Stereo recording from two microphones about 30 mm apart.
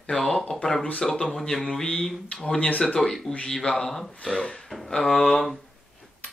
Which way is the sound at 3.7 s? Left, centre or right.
Centre.